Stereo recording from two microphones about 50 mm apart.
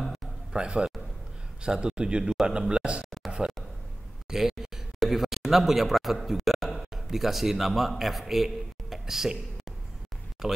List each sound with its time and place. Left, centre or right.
0.5 s speech: centre
3.3 s a sound: centre
4.3 s a man's voice: centre
10.4 s speech: centre